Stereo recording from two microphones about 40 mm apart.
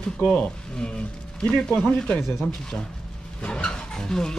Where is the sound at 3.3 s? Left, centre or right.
Left.